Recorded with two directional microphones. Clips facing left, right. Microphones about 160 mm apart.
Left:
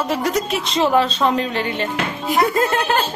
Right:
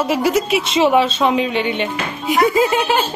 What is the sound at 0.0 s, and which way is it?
Speech, 5° right (ahead or behind).